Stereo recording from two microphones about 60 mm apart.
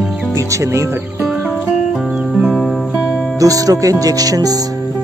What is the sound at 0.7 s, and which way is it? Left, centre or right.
Speech, right.